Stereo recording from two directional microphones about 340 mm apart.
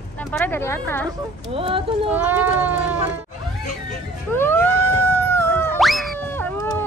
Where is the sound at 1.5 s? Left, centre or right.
Centre.